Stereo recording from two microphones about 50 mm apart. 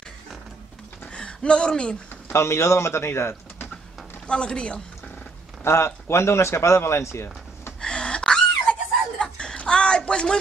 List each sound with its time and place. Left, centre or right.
1.1 s speech: centre
2.3 s speech: left
4.3 s a woman's voice: centre
5.6 s speech: left
7.8 s a sound: centre
9.2 s laughter: centre
9.6 s a sound: centre